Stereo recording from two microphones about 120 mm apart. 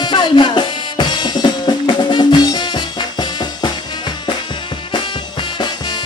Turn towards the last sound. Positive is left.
turn(degrees=40)  # may be behind; listen again after turning